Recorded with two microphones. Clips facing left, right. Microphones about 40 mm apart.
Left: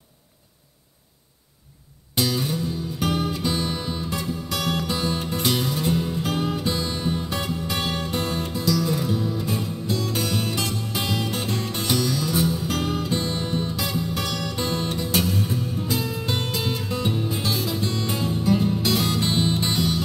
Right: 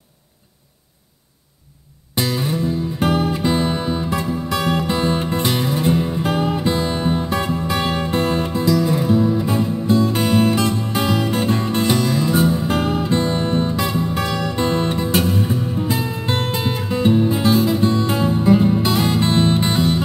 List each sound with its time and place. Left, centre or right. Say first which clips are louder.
2.1 s music: right 3 dB; right